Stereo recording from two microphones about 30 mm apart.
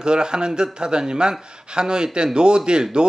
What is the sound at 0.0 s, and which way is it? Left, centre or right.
A man's voice, right.